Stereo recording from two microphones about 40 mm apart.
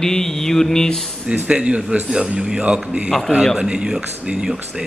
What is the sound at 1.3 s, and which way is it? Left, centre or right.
Speech, right.